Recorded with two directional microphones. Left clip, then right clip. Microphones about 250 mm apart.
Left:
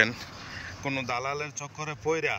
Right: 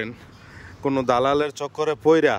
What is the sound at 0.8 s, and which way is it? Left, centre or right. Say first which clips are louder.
Speech: right 9 dB; centre.